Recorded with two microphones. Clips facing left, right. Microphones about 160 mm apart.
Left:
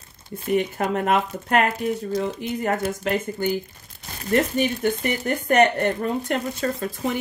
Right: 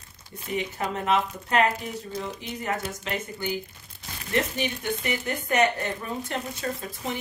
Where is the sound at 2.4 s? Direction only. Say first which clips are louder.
Left 7 dB; 55° left (ahead or behind).